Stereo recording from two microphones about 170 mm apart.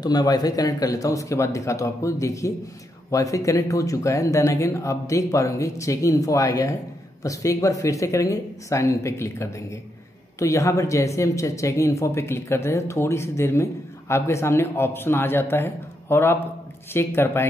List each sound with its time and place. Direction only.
0.0 s speech: 25° left (ahead or behind)